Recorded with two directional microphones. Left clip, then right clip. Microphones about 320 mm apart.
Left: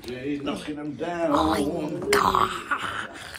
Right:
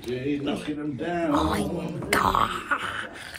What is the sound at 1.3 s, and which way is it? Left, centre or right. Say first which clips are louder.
Speech: left 4 dB; centre.